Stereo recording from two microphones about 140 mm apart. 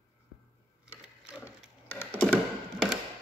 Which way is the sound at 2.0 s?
10° left (ahead or behind).